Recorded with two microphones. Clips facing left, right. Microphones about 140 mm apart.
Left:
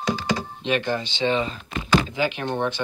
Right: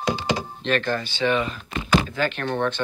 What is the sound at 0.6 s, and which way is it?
Speech, 15° left (ahead or behind).